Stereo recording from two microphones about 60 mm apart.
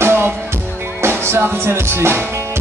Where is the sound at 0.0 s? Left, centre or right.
Right.